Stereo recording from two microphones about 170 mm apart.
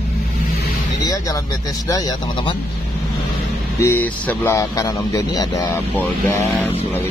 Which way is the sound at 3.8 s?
10° left (ahead or behind).